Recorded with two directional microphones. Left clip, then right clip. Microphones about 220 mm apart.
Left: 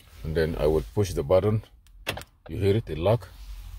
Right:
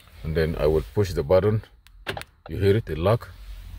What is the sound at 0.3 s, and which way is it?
Speech, 5° right (ahead or behind).